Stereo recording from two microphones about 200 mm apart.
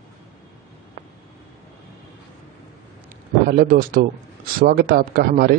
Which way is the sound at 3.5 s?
45° right (ahead or behind).